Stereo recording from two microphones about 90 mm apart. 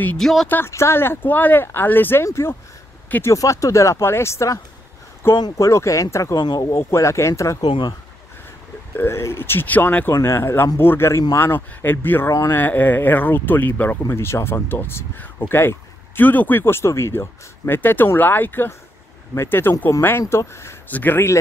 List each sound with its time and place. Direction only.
0.2 s speech: centre (ahead or behind)
0.5 s speech: 25° left (ahead or behind)
3.3 s speech: 35° left (ahead or behind)
6.4 s speech: 55° left (ahead or behind)
6.7 s speech: 30° left (ahead or behind)
7.6 s speech: 60° left (ahead or behind)
8.9 s speech: 30° left (ahead or behind)
10.1 s speech: 30° left (ahead or behind)